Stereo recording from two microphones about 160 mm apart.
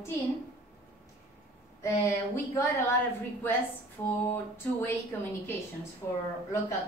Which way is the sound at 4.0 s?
15° left (ahead or behind).